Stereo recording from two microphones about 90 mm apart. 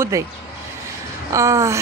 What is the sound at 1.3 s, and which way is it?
Speech, 35° right (ahead or behind).